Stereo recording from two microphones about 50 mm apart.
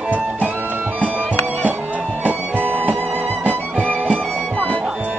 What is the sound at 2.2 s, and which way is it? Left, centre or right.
Music, right.